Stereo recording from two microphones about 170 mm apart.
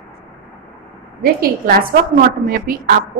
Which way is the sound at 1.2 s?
60° right (ahead or behind).